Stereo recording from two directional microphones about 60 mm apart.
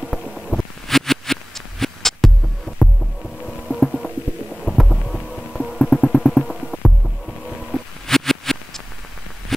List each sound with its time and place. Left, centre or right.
0.5 s a sound: centre
4.6 s hum: centre
5.7 s music: centre